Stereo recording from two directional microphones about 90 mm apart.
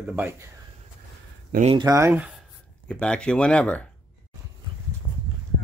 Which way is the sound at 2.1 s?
10° right (ahead or behind).